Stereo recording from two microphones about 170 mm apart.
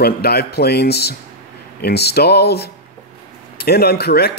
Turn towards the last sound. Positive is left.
turn(degrees=70)  # may be behind; listen again after turning